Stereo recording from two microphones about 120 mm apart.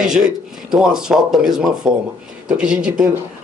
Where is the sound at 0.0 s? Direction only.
5° right (ahead or behind).